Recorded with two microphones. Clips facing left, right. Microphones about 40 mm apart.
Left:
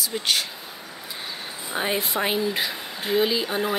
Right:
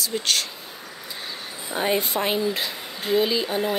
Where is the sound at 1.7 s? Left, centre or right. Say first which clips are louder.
Right 2 dB; centre.